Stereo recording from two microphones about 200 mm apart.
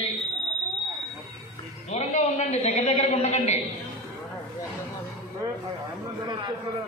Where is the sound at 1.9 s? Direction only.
35° left (ahead or behind).